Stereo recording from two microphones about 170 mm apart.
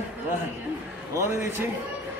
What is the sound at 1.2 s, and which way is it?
Speech, 15° right (ahead or behind).